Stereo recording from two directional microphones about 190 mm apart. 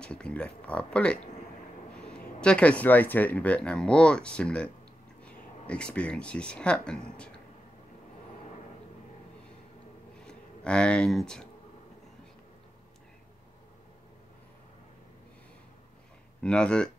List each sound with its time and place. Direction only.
0.0 s speech: 5° left (ahead or behind)
2.1 s speech: 5° left (ahead or behind)
10.1 s a sound: 5° left (ahead or behind)
16.4 s speech: 5° left (ahead or behind)